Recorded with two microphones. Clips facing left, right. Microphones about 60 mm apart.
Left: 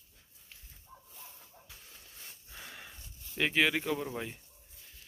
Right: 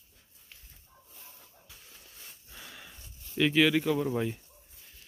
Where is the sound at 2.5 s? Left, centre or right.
Left.